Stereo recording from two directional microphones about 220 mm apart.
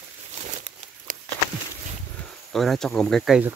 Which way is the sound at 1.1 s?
35° right (ahead or behind).